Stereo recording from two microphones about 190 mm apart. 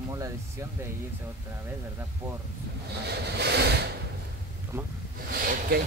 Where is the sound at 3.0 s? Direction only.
60° right (ahead or behind).